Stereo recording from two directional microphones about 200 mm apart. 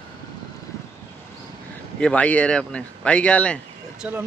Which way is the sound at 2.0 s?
5° left (ahead or behind).